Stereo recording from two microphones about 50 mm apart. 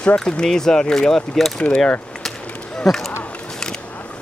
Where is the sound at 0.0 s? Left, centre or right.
Left.